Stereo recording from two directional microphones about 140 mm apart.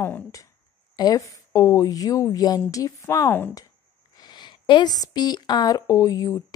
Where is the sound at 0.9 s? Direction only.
25° left (ahead or behind).